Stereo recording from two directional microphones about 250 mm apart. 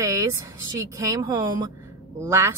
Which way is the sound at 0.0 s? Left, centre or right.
Centre.